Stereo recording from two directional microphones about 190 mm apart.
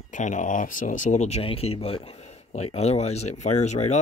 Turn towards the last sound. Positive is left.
turn(degrees=35)  # may be behind; listen again after turning